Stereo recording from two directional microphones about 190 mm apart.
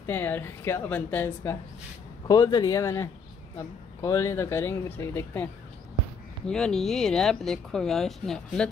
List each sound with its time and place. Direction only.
0.0 s speech: 10° left (ahead or behind)